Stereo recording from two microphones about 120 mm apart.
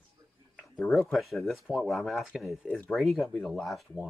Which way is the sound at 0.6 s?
Centre (ahead or behind).